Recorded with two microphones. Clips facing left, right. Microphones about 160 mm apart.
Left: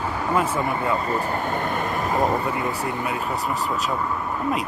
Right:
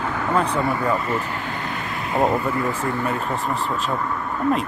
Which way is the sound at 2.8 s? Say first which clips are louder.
Right 2 dB; 15° left (ahead or behind).